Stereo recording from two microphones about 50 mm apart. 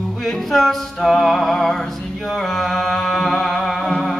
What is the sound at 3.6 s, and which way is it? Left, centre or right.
Music, centre.